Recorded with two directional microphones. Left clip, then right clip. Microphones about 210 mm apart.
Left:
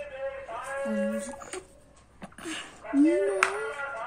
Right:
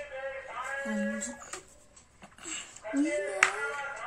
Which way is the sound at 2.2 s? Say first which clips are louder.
Left 4 dB; 40° left (ahead or behind).